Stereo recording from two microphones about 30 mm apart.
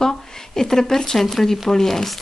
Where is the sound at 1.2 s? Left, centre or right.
Centre.